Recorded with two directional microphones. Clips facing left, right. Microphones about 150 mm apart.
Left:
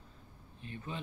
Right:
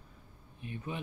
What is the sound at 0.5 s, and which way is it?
Speech, 15° right (ahead or behind).